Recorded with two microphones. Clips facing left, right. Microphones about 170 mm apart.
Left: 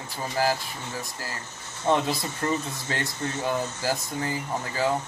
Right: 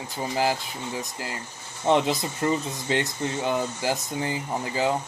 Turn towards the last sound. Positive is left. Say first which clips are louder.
# right 1 dB
turn(degrees=-20)  # may be behind; listen again after turning